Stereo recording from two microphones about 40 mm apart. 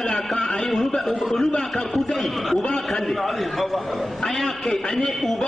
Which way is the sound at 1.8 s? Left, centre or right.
Centre.